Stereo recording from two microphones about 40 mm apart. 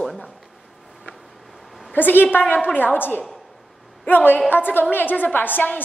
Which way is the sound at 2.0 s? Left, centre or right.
Left.